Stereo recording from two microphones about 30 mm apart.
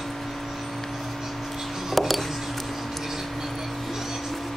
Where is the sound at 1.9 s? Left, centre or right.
Centre.